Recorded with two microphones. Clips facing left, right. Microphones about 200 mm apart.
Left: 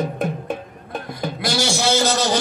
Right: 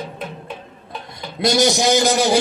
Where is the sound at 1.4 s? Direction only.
20° right (ahead or behind).